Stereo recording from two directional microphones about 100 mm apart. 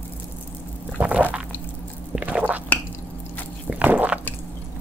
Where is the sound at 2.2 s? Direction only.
15° right (ahead or behind).